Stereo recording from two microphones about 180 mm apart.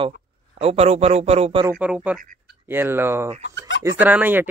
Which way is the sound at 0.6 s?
35° right (ahead or behind).